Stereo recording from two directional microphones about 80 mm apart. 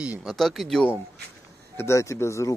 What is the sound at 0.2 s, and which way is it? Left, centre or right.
Speech, centre.